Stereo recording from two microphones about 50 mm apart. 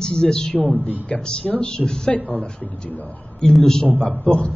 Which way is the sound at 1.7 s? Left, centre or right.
Centre.